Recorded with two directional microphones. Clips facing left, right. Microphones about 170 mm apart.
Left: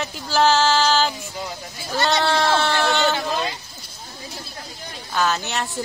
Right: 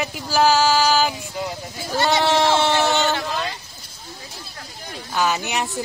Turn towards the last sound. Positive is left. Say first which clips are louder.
# right 1 dB
turn(degrees=-15)  # may be behind; listen again after turning